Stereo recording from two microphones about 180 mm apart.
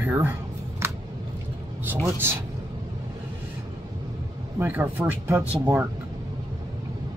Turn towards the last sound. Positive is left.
turn(degrees=-10)  # may be behind; listen again after turning